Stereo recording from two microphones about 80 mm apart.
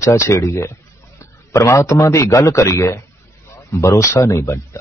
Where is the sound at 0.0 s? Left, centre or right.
Left.